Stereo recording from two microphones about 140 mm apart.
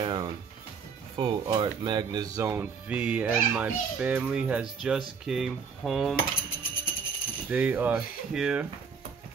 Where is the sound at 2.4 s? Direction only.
15° right (ahead or behind).